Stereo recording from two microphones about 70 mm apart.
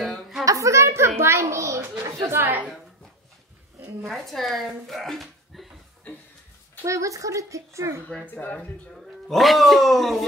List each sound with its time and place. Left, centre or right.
0.0 s a sound: centre
0.5 s a sound: right
2.0 s a woman's voice: right
4.1 s speech: centre
6.9 s speech: right
8.5 s speech: centre